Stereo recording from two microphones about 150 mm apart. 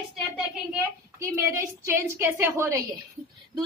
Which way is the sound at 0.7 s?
15° right (ahead or behind).